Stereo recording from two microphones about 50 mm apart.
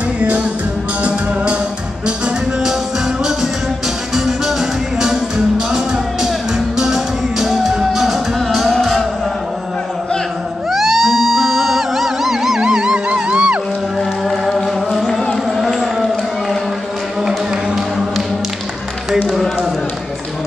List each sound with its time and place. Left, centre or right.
0.2 s music: right
4.1 s music: centre
6.8 s music: centre
10.7 s music: centre; by 13.6 s right
15.5 s a sound: centre
17.7 s music: centre